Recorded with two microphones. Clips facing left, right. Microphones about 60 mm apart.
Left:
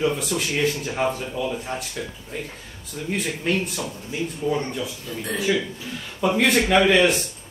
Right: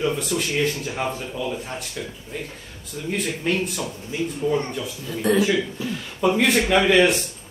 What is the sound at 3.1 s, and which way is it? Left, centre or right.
Speech, centre.